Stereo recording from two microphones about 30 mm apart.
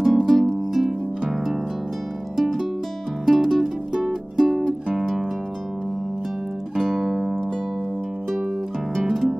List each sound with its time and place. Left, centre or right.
0.0 s music: centre
0.7 s harp: centre
2.3 s music: centre
3.6 s music: centre
6.8 s music: centre